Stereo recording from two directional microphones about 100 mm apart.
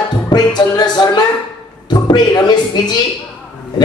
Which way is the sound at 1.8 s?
45° left (ahead or behind).